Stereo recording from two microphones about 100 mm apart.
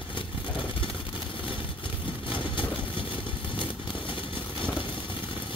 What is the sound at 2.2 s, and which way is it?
Vehicle, 55° left (ahead or behind).